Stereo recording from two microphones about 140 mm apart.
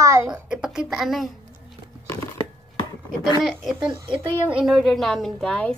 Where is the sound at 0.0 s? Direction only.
20° right (ahead or behind).